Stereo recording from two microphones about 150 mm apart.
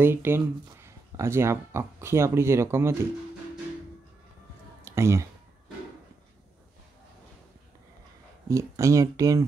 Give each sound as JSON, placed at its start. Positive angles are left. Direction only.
{"t": 0.0, "sound": "speech", "side_deg": -15}
{"t": 4.8, "sound": "a sound", "side_deg": -20}
{"t": 8.5, "sound": "speech", "side_deg": -20}